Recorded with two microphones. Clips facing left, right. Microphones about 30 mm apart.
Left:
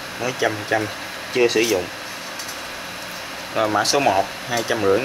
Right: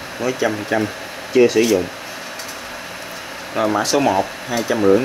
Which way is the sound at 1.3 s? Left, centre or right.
Left.